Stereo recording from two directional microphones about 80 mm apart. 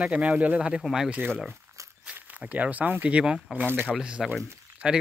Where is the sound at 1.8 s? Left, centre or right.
Right.